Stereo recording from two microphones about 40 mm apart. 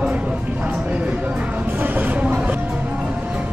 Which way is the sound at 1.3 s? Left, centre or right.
Right.